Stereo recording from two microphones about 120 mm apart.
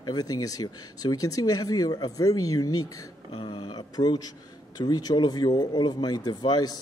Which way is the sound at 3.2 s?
40° left (ahead or behind).